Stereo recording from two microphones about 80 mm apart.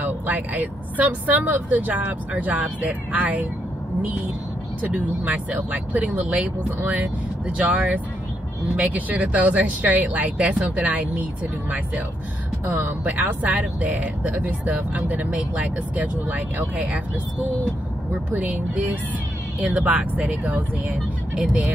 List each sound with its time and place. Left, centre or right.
0.0 s speech: right
4.8 s speech: centre
12.7 s speech: right
18.3 s speech: right